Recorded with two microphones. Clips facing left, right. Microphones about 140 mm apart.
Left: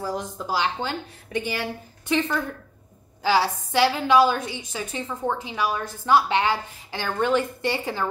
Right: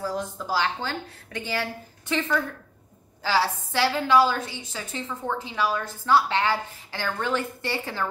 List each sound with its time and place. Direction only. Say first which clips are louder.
0.0 s a woman's voice: left 1 dB; 15° left (ahead or behind)